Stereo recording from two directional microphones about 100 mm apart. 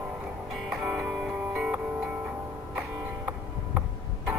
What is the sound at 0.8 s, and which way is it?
Music, 10° right (ahead or behind).